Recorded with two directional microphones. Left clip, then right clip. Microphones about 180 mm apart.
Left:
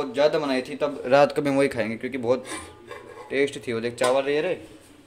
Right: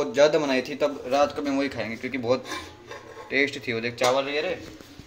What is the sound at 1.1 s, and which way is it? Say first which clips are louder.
Speech: left 7 dB; 65° left (ahead or behind).